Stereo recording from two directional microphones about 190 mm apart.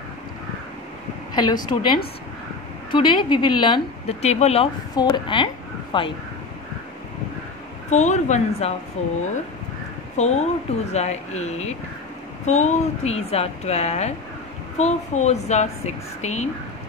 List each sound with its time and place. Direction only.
1.3 s speech: 25° left (ahead or behind)
4.9 s speech: 25° left (ahead or behind)
7.9 s a woman's voice: 40° left (ahead or behind)